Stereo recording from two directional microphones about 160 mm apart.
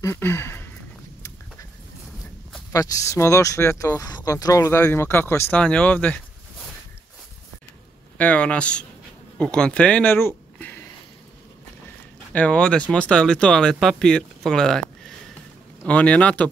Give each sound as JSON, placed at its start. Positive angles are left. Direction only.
{"t": 0.0, "sound": "a sound", "side_deg": 15}
{"t": 2.7, "sound": "speech", "side_deg": 20}
{"t": 8.2, "sound": "speech", "side_deg": 10}
{"t": 12.3, "sound": "speech", "side_deg": 10}